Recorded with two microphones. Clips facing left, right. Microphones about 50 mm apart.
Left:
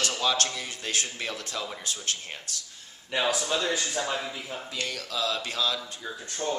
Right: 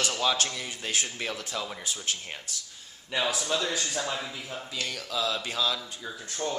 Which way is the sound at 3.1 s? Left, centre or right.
Centre.